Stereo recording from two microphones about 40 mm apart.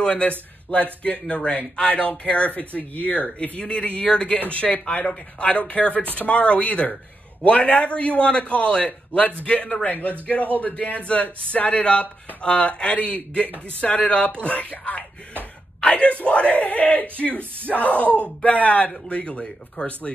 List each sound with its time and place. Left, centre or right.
0.1 s speech: left
1.2 s speech: left
1.5 s speech: left
9.8 s speech: left
16.6 s speech: left